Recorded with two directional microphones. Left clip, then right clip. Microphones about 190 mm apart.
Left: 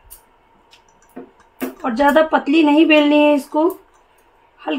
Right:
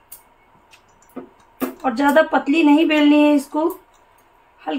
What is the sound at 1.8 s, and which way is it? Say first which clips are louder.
Speech: left 2 dB; 40° left (ahead or behind).